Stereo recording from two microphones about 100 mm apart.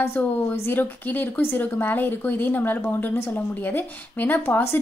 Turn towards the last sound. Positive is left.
turn(degrees=20)  # may be behind; listen again after turning